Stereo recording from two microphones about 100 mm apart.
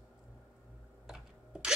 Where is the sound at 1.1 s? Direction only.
5° right (ahead or behind).